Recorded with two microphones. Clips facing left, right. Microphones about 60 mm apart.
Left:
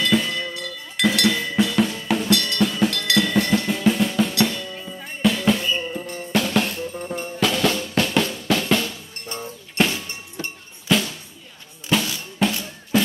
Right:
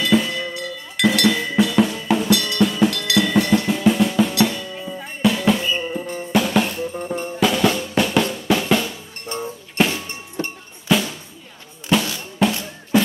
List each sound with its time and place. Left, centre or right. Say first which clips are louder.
0.0 s cowbell: right 2 dB; centre
1.6 s music: right 3 dB; centre
2.3 s music: right 1 dB; centre
2.6 s music: right 5 dB; centre
2.9 s drum: right 1 dB; centre
3.3 s drum: right 3 dB; centre
5.6 s music: right 2 dB; right
5.9 s drum: right 3 dB; centre
9.3 s chink: right 5 dB; centre
9.8 s music: right 2 dB; centre
11.9 s drum: right 3 dB; centre
12.9 s music: right 3 dB; centre